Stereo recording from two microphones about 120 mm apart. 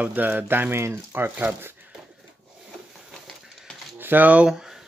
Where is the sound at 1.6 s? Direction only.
15° right (ahead or behind).